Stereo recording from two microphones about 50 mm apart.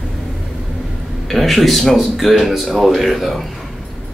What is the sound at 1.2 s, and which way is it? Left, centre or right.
Speech, centre.